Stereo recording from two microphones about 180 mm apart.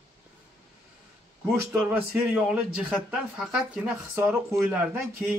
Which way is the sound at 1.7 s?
5° right (ahead or behind).